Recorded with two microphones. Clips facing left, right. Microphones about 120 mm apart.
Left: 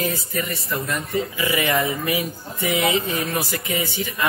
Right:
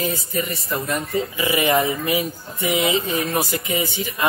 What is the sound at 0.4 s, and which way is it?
Speech, 30° right (ahead or behind).